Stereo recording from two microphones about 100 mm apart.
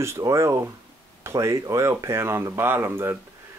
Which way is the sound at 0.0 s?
30° right (ahead or behind).